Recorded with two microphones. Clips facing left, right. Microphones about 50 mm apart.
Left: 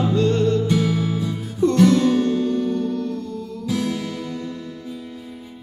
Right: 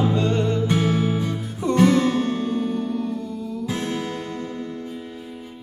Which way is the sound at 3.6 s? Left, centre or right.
Right.